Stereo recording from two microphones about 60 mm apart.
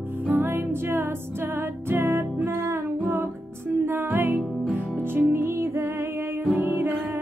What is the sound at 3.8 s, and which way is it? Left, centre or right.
Music, right.